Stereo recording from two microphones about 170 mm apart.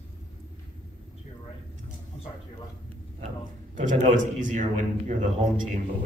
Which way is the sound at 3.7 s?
45° right (ahead or behind).